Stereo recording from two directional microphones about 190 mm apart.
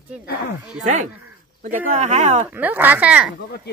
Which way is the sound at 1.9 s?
40° right (ahead or behind).